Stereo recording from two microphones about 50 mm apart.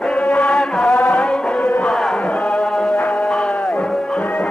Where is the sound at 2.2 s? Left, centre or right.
Left.